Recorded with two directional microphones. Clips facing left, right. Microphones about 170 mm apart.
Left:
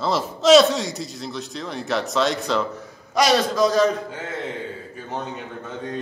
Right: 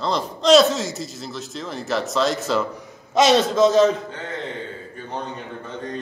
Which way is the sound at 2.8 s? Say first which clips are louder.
Right 3 dB; 25° right (ahead or behind).